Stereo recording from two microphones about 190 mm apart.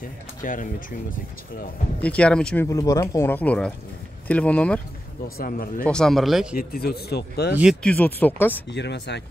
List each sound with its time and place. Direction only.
0.4 s speech: 45° left (ahead or behind)
2.0 s speech: 5° left (ahead or behind)
5.4 s speech: 50° left (ahead or behind)
5.9 s speech: 5° left (ahead or behind)
6.5 s speech: 50° left (ahead or behind)
7.8 s speech: 5° left (ahead or behind)
8.6 s speech: 65° left (ahead or behind)